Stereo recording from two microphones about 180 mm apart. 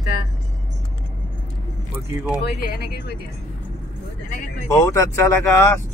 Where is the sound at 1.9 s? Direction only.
5° right (ahead or behind).